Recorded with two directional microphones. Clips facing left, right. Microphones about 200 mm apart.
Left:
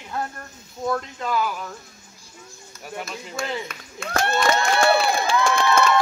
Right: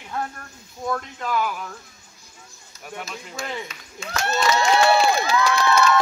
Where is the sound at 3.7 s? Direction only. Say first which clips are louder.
Left 3 dB; 55° left (ahead or behind).